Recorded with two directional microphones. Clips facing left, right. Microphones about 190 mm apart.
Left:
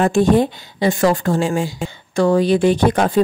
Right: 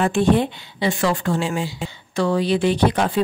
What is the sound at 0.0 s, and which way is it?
Speech, 40° left (ahead or behind).